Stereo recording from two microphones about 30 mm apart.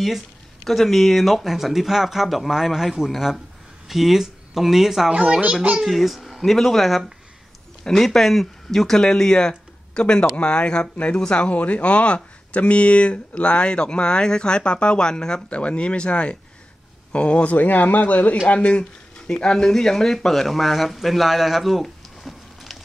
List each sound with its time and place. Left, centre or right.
0.7 s a child's voice: centre
6.4 s speech: centre
8.9 s speech: left
9.5 s a sound: left
10.4 s speech: left
11.5 s speech: left
15.5 s speech: left
17.5 s speech: left
18.5 s speech: left
19.1 s speech: left; by 21.8 s centre
21.8 s a sound: centre